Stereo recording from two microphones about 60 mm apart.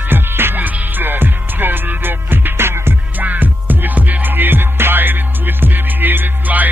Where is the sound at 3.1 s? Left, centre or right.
Right.